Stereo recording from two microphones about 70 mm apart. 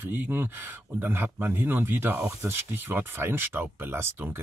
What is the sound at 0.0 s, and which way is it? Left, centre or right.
Speech, right.